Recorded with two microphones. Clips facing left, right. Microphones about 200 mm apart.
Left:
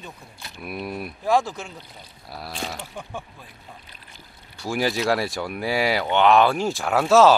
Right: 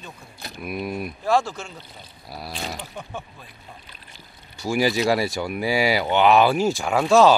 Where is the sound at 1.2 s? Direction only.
15° left (ahead or behind).